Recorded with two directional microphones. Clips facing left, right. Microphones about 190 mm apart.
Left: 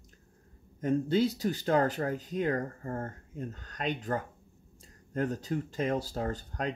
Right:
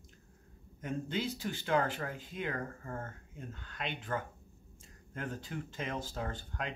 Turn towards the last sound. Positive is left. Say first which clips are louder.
# left 6 dB
turn(degrees=40)  # may be behind; listen again after turning